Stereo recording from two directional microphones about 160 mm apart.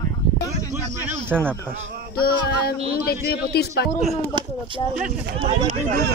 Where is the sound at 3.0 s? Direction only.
85° left.